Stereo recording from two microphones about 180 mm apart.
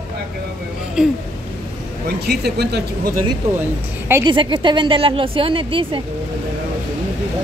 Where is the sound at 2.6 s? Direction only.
65° right (ahead or behind).